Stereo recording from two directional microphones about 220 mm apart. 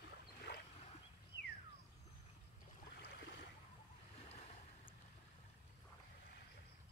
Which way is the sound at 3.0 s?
50° left (ahead or behind).